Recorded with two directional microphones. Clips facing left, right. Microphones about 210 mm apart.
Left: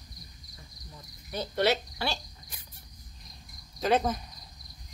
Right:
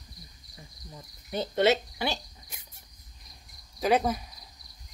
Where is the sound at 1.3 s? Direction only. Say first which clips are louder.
Right 3 dB; 20° right (ahead or behind).